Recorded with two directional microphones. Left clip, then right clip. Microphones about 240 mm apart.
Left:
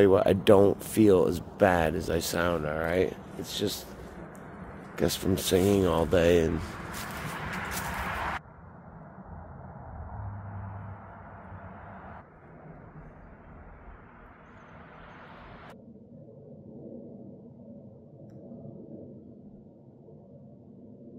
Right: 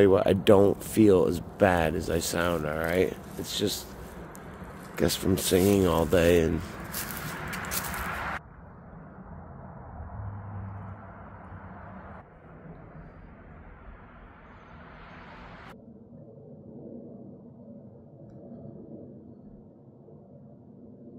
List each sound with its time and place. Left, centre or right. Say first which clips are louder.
0.0 s speech: even; centre
4.9 s speech: right 2 dB; centre
7.3 s vehicle: even; left